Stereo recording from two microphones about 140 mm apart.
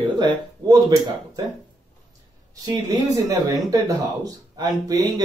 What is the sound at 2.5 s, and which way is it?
Speech, 25° right (ahead or behind).